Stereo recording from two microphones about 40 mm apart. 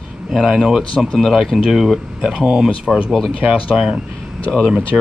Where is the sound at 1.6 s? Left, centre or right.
Centre.